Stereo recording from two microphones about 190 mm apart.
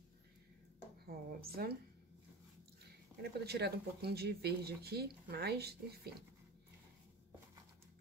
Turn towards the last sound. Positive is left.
turn(degrees=-55)  # may be behind; listen again after turning